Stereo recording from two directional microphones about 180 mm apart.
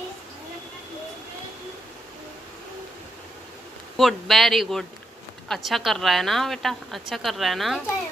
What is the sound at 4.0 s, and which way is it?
A woman's voice, centre (ahead or behind).